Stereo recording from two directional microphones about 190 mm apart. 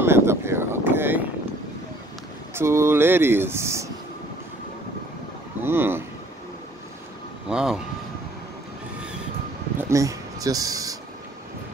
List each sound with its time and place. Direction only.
0.0 s vehicle: 15° right (ahead or behind)
2.5 s speech: 15° right (ahead or behind)
5.6 s vehicle: 10° right (ahead or behind)
7.4 s vehicle: 5° right (ahead or behind)
9.8 s a sound: 15° right (ahead or behind)